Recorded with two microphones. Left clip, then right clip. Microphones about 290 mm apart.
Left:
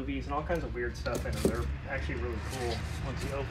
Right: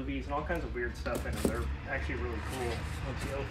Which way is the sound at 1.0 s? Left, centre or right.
Centre.